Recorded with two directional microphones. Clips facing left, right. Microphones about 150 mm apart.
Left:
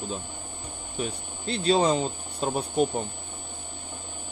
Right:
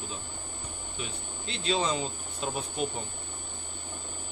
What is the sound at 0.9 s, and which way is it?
Speech, 40° left (ahead or behind).